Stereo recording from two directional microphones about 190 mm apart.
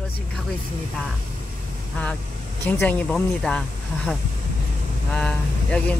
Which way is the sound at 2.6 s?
10° left (ahead or behind).